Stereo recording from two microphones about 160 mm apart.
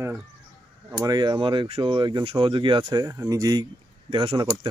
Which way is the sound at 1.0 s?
25° right (ahead or behind).